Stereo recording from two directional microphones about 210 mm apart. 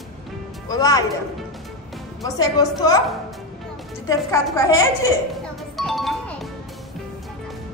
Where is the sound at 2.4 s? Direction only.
15° left (ahead or behind).